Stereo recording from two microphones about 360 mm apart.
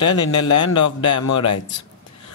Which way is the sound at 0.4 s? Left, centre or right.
Left.